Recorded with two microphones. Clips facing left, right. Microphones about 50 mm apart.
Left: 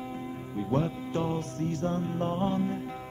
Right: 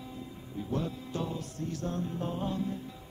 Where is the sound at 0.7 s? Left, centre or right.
Left.